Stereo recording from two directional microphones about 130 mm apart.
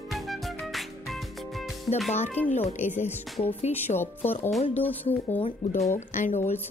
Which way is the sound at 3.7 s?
15° left (ahead or behind).